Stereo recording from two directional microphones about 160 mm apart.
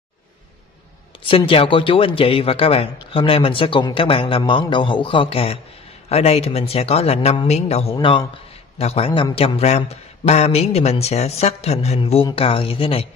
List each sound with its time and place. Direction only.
1.2 s speech: 35° left (ahead or behind)